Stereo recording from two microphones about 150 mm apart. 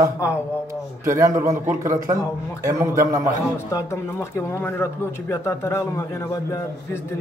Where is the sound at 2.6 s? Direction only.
20° right (ahead or behind).